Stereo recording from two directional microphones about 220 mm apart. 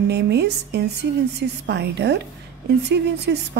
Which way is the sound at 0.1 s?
50° right (ahead or behind).